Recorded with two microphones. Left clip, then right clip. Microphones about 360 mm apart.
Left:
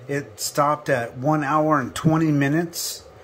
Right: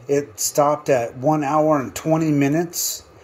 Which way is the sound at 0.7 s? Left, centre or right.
Centre.